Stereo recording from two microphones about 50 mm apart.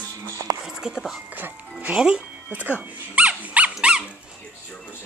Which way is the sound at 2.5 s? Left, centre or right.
Right.